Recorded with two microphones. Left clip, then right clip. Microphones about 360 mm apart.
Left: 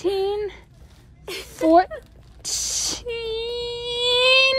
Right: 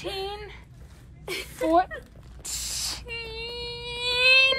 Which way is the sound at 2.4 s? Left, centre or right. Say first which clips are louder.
Left 7 dB; left.